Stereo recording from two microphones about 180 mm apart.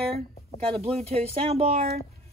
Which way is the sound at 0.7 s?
35° right (ahead or behind).